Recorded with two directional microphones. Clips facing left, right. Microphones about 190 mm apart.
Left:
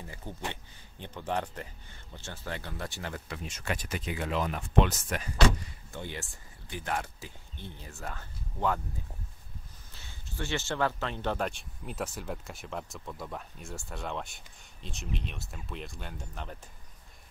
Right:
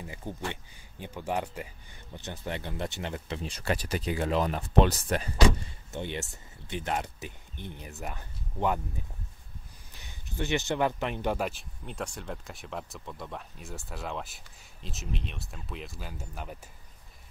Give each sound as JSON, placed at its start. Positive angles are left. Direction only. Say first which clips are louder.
{"t": 0.3, "sound": "speech", "louder": "right 3 dB", "side_deg": -15}
{"t": 3.4, "sound": "speech", "louder": "right 5 dB", "side_deg": -35}
{"t": 5.9, "sound": "speech", "louder": "right 5 dB", "side_deg": -20}
{"t": 9.9, "sound": "speech", "louder": "right 4 dB", "side_deg": -15}